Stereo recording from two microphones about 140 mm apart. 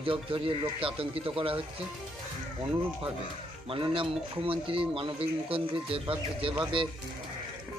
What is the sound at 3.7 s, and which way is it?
Speech, 40° right (ahead or behind).